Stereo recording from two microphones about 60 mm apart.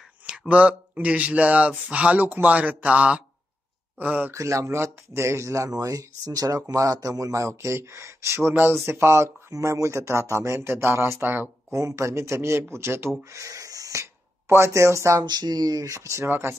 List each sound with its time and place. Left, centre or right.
0.5 s speech: right
4.3 s speech: right
9.5 s speech: right
11.7 s speech: right
13.3 s speech: right
14.5 s speech: right
16.3 s speech: right